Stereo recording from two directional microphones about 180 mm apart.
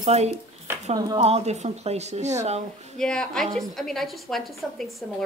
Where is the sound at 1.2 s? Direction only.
35° right (ahead or behind).